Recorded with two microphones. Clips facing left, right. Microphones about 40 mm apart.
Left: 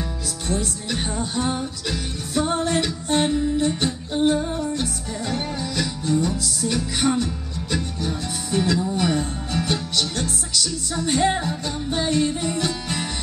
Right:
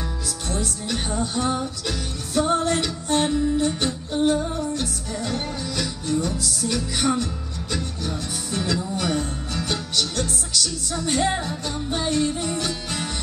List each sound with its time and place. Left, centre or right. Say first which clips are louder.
0.5 s music: left 2 dB; centre